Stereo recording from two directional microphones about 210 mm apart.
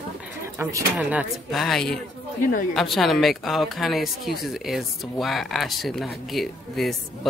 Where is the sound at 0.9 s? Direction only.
Centre (ahead or behind).